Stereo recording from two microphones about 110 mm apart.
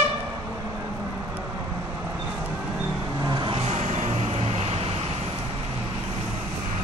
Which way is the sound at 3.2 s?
45° right (ahead or behind).